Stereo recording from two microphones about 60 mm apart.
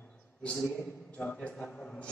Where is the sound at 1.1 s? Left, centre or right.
Left.